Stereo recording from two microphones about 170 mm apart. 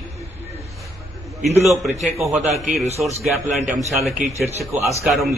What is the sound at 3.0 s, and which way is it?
Speech, 5° right (ahead or behind).